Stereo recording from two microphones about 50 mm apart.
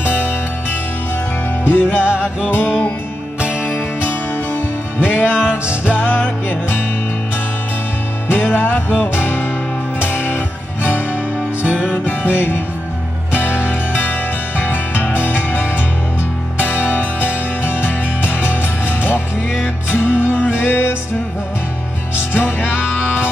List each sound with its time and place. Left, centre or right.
1.7 s music: left
2.0 s music: right
2.4 s music: left
4.5 s music: left
8.3 s music: left
11.3 s music: right
12.2 s music: left
14.6 s music: left
18.6 s music: left